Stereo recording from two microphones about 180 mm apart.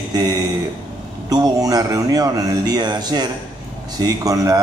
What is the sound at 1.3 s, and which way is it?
A man's voice, 20° right (ahead or behind).